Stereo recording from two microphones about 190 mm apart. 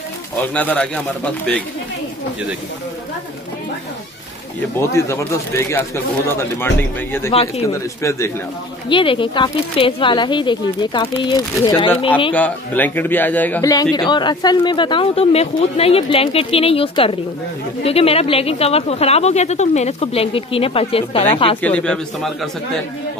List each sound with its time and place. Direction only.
0.4 s speech: 10° left (ahead or behind)
4.7 s speech: 15° left (ahead or behind)
8.8 s speech: 25° left (ahead or behind)
12.4 s speech: 10° left (ahead or behind); by 21.5 s 30° left (ahead or behind)
21.5 s a man's voice: 5° left (ahead or behind)